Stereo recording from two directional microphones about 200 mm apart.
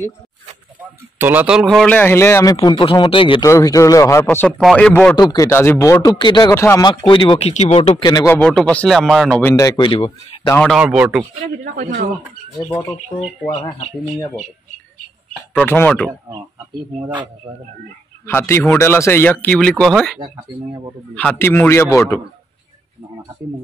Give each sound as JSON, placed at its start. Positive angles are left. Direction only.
{"t": 0.7, "sound": "a man's voice", "side_deg": -10}
{"t": 2.5, "sound": "speech", "side_deg": 25}
{"t": 5.1, "sound": "speech", "side_deg": 20}
{"t": 8.4, "sound": "speech", "side_deg": 5}
{"t": 9.5, "sound": "speech", "side_deg": 15}
{"t": 10.6, "sound": "speech", "side_deg": 0}
{"t": 11.6, "sound": "speech", "side_deg": -55}
{"t": 12.7, "sound": "speech", "side_deg": 30}
{"t": 15.5, "sound": "speech", "side_deg": 10}
{"t": 17.4, "sound": "speech", "side_deg": -20}
{"t": 18.2, "sound": "speech", "side_deg": 10}